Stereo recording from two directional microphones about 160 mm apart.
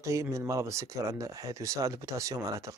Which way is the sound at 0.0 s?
20° right (ahead or behind).